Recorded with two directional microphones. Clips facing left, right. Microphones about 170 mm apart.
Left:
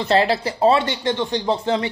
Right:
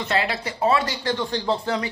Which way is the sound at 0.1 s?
35° left (ahead or behind).